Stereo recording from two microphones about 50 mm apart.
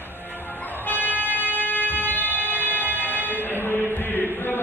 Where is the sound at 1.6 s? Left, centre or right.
Left.